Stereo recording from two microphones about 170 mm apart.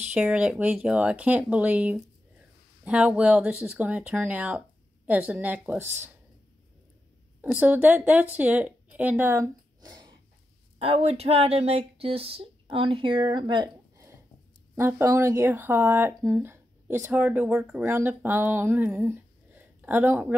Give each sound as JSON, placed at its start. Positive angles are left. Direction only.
{"t": 0.1, "sound": "speech", "side_deg": -5}
{"t": 7.5, "sound": "a woman's voice", "side_deg": -10}
{"t": 10.8, "sound": "speech", "side_deg": -35}
{"t": 14.8, "sound": "speech", "side_deg": -15}